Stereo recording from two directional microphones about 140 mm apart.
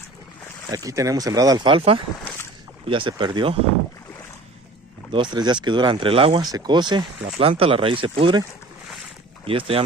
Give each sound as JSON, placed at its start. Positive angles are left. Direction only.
{"t": 0.7, "sound": "speech", "side_deg": -25}
{"t": 5.1, "sound": "speech", "side_deg": -35}
{"t": 6.4, "sound": "speech", "side_deg": -30}
{"t": 7.2, "sound": "speech", "side_deg": -45}